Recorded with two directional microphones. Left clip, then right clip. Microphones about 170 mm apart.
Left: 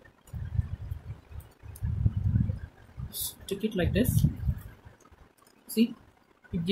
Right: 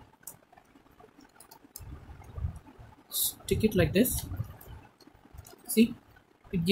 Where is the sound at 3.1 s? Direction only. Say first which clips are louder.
Right 4 dB; 25° right (ahead or behind).